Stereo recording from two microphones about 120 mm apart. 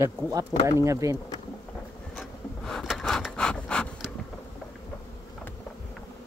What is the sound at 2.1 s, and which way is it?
Wood, 5° left (ahead or behind).